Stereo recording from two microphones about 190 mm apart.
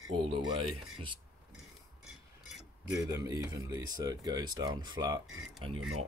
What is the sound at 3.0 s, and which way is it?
Speech, 15° right (ahead or behind).